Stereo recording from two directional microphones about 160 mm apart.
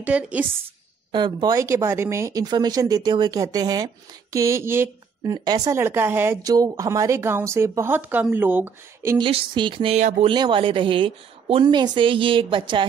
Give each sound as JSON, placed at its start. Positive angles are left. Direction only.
{"t": 0.0, "sound": "a woman's voice", "side_deg": -10}
{"t": 1.1, "sound": "speech", "side_deg": -25}
{"t": 9.2, "sound": "a woman's voice", "side_deg": -35}
{"t": 10.3, "sound": "a woman's voice", "side_deg": -30}